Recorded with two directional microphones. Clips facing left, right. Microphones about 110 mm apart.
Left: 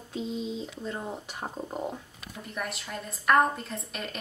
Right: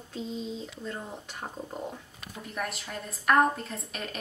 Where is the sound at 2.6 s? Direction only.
Centre (ahead or behind).